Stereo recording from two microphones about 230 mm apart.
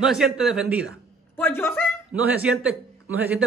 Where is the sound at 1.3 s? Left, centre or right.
Centre.